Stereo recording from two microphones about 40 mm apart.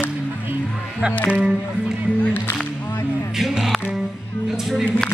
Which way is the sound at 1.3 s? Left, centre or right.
Right.